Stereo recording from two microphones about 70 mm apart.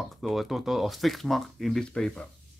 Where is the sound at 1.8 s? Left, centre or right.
Centre.